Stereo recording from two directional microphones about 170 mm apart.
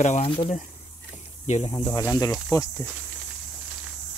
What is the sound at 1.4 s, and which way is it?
Speech, 40° left (ahead or behind).